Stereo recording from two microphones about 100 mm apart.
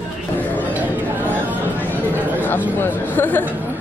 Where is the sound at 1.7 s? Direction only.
20° left (ahead or behind).